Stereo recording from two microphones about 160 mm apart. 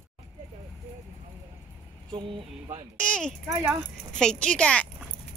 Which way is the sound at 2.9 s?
5° left (ahead or behind).